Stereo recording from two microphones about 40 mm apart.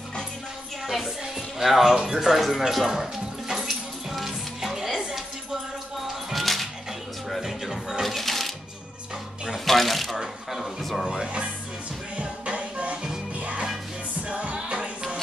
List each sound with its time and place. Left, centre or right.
0.8 s speech: centre
2.7 s music: centre
4.9 s a sound: centre
6.3 s music: centre
8.0 s shuffling cards: centre
9.7 s shuffling cards: centre
10.5 s a sound: centre
11.1 s speech: right
12.2 s music: right
12.9 s music: centre
13.4 s music: right